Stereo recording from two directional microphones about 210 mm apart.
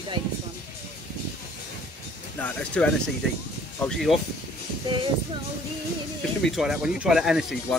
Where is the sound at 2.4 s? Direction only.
5° left (ahead or behind).